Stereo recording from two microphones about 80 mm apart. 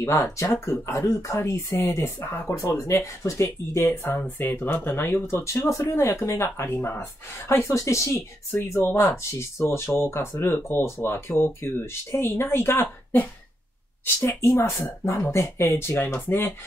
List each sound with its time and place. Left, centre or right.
0.0 s speech: left
7.6 s speech: left